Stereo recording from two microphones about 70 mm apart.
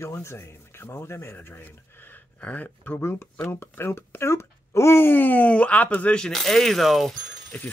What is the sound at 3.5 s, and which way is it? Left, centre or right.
Speech, left.